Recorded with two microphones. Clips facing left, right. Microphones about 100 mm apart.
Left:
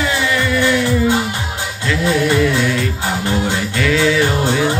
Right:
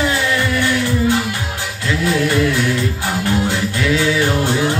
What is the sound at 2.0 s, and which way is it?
Music, 25° left (ahead or behind).